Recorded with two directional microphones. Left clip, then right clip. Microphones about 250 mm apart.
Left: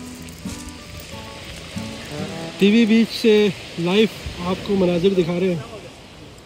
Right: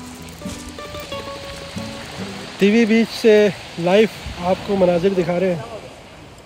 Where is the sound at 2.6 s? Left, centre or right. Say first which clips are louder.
Right 1 dB; right.